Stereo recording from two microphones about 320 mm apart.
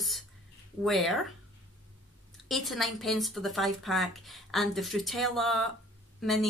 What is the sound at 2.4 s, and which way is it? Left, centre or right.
Speech, centre.